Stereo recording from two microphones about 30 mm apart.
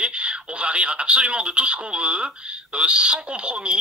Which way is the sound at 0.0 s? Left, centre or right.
Right.